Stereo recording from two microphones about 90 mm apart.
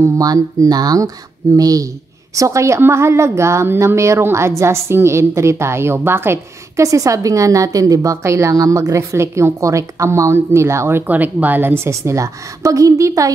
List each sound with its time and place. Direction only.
0.0 s a woman's voice: 40° right (ahead or behind)